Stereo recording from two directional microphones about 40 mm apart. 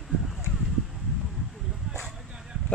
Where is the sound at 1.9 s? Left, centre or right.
Centre.